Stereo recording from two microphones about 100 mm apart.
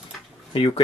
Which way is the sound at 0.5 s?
75° left (ahead or behind).